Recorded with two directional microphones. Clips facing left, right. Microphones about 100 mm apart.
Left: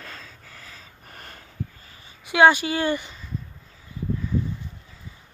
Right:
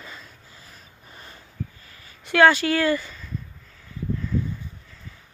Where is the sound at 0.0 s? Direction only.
75° left (ahead or behind).